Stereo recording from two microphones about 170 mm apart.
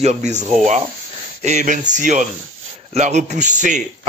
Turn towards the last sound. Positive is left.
turn(degrees=-45)  # may be behind; listen again after turning